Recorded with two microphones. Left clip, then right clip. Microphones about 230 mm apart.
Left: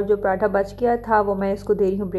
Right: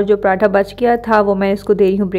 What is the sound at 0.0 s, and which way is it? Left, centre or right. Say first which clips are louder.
A woman's voice: right 7 dB; right.